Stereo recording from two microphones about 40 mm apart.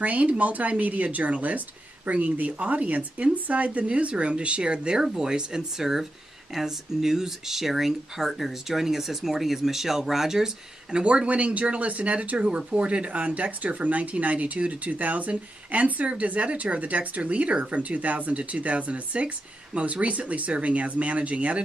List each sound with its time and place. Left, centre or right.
0.0 s speech: right